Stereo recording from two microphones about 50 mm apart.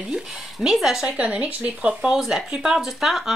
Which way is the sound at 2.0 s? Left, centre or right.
Centre.